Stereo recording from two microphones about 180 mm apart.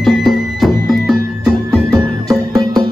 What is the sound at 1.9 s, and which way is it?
Music, 20° right (ahead or behind).